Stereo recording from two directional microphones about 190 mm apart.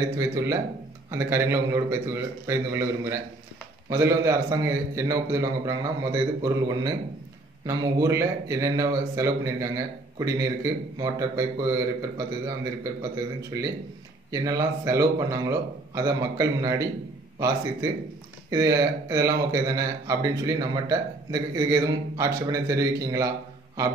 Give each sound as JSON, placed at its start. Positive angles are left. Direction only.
{"t": 0.2, "sound": "a man's voice", "side_deg": -15}
{"t": 14.3, "sound": "a man's voice", "side_deg": -20}
{"t": 18.5, "sound": "a man's voice", "side_deg": -20}